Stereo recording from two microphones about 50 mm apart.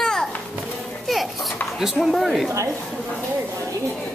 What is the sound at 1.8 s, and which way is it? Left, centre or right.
Speech, centre.